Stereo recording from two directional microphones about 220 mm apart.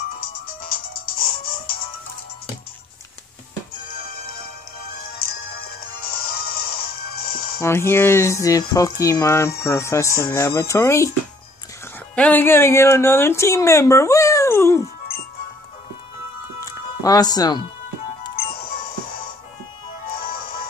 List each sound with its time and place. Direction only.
1.0 s music: 40° left (ahead or behind)
5.9 s music: 45° left (ahead or behind)
7.6 s speech: 10° left (ahead or behind)
12.2 s speech: 10° left (ahead or behind)
16.6 s music: 15° left (ahead or behind)
20.2 s music: 45° left (ahead or behind)